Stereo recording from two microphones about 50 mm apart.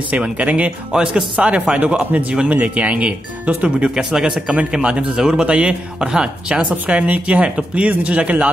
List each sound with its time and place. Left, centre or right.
0.1 s speech: right
0.9 s speech: centre